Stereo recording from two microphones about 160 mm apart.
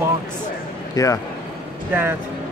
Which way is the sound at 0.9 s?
20° left (ahead or behind).